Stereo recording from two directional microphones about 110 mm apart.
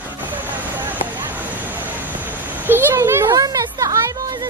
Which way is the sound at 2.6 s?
20° right (ahead or behind).